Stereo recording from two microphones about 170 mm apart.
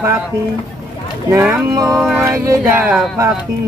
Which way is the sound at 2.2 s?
15° right (ahead or behind).